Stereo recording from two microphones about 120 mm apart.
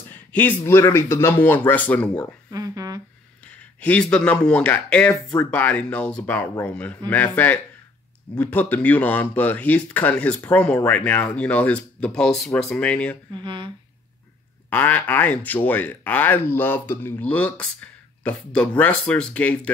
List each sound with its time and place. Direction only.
0.1 s a sound: 15° left (ahead or behind)
0.7 s speech: 20° left (ahead or behind)
2.5 s a sound: 30° right (ahead or behind)
3.8 s speech: 10° left (ahead or behind)
13.4 s speech: 40° right (ahead or behind)
14.7 s speech: 15° left (ahead or behind)